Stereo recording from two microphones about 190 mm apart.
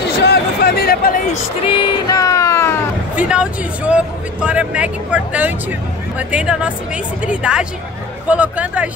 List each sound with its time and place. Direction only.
0.0 s a sound: 60° left (ahead or behind)
1.7 s speech: 20° left (ahead or behind)
3.2 s speech: 5° right (ahead or behind)